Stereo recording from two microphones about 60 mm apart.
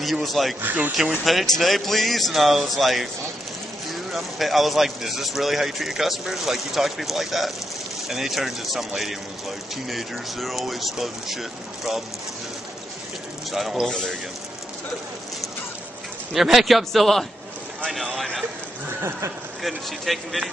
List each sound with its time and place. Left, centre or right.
0.0 s speech: centre
0.6 s speech: right
1.2 s speech: centre
4.1 s speech: centre
13.5 s speech: centre
16.3 s speech: centre
18.9 s speech: right
19.6 s speech: centre